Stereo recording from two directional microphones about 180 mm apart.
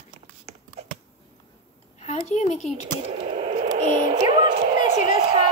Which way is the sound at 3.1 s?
30° right (ahead or behind).